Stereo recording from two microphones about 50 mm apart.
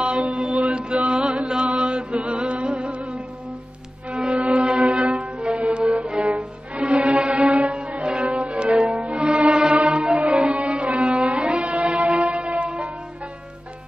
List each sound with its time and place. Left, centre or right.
0.0 s mantra: right
1.2 s chant: centre
1.7 s music: right
7.6 s music: right
10.2 s music: right